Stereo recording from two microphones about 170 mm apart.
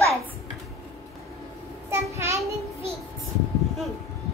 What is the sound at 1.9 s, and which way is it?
Child singing, 15° right (ahead or behind).